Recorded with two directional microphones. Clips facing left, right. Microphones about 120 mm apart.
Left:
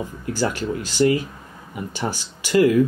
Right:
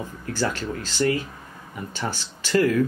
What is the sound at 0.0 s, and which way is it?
Speech, 15° left (ahead or behind).